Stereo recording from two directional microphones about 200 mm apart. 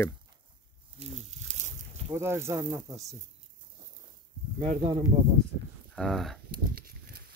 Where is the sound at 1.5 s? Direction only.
35° right (ahead or behind).